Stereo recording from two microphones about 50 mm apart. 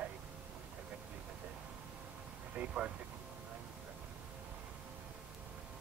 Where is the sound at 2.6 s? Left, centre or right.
Right.